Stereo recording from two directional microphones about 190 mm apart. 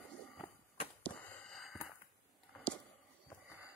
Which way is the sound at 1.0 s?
5° left (ahead or behind).